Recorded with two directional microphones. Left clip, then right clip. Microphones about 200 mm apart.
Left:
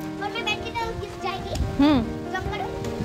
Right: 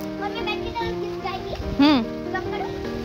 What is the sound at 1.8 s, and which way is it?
Music, centre (ahead or behind).